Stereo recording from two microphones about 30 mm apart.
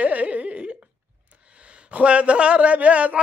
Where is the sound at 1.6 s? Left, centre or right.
Right.